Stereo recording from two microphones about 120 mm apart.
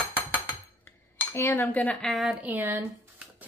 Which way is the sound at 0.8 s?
20° left (ahead or behind).